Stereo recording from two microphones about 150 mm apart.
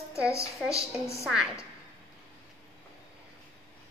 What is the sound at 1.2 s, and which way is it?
Speech, 5° right (ahead or behind).